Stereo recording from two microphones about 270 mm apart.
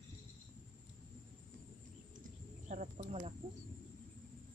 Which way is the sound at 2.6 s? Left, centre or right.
Right.